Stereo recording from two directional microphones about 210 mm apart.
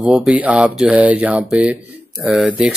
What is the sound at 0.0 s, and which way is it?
Speech, 5° right (ahead or behind).